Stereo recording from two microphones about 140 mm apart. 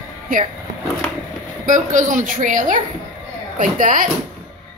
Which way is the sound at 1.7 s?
65° right (ahead or behind).